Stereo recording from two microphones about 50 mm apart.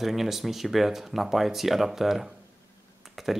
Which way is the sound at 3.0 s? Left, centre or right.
Centre.